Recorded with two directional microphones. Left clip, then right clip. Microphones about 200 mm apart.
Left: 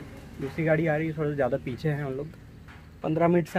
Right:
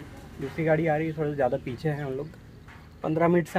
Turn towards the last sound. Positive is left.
turn(degrees=5)  # may be behind; listen again after turning